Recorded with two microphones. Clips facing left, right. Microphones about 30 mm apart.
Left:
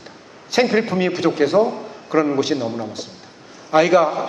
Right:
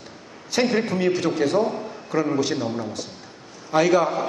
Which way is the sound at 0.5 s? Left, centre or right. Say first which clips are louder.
Left 4 dB; centre.